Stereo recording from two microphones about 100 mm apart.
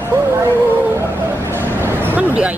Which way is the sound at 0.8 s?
25° right (ahead or behind).